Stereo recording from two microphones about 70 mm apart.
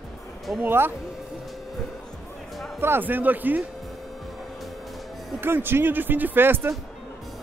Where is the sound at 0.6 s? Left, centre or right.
Right.